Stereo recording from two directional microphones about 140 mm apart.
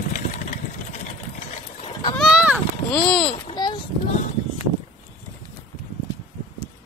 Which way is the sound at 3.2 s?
35° left (ahead or behind).